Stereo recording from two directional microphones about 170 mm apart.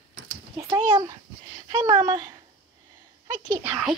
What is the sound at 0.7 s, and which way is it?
A child's voice, 20° right (ahead or behind).